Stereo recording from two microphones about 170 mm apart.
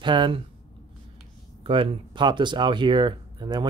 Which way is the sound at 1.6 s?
30° right (ahead or behind).